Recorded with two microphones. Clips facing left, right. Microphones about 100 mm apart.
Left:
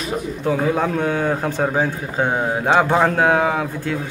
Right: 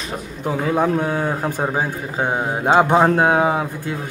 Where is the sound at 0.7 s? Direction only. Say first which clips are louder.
Right 1 dB; 15° right (ahead or behind).